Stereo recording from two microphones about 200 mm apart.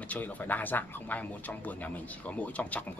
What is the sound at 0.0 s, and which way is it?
Speech, 5° left (ahead or behind).